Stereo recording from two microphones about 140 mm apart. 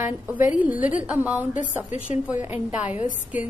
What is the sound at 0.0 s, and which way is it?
A woman's voice, 15° right (ahead or behind).